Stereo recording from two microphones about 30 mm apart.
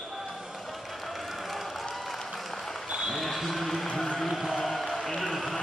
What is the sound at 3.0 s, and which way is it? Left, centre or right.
Basketball bounce, centre.